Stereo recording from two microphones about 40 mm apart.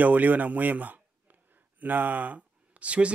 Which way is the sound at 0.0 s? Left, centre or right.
Right.